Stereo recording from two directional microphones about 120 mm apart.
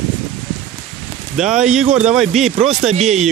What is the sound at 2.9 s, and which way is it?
Speech, 70° right (ahead or behind).